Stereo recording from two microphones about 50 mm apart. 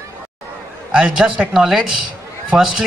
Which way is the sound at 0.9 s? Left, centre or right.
Centre.